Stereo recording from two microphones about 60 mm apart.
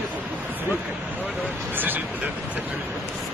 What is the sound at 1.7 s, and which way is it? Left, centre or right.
Speech, right.